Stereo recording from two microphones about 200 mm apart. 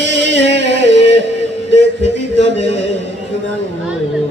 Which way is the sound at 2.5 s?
65° right (ahead or behind).